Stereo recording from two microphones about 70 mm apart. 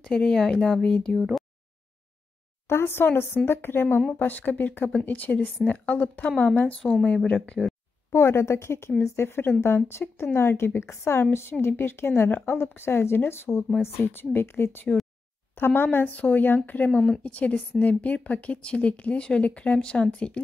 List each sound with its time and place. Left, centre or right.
0.0 s speech: centre
1.1 s speech: centre
2.7 s a woman's voice: left; by 7.7 s centre
8.1 s a woman's voice: left; by 20.4 s centre